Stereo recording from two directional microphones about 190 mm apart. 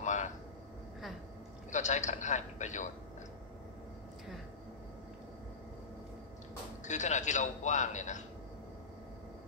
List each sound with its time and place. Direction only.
0.0 s vehicle: 40° left (ahead or behind)
1.7 s a man's voice: 40° left (ahead or behind)
6.8 s a man's voice: 40° left (ahead or behind)